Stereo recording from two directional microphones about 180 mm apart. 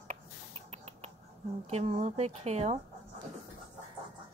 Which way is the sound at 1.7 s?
35° right (ahead or behind).